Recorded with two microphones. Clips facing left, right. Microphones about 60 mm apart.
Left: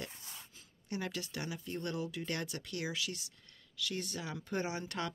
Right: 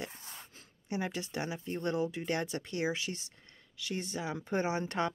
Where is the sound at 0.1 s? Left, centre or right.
Right.